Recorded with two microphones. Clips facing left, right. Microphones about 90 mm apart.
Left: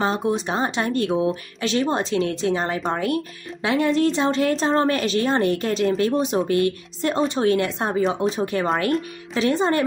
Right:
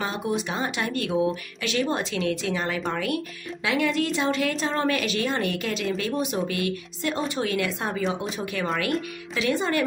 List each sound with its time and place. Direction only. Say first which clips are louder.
0.0 s a woman's voice: left 5 dB; 35° left (ahead or behind)